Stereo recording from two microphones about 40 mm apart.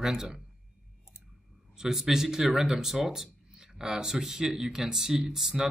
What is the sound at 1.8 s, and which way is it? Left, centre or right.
Speech, centre.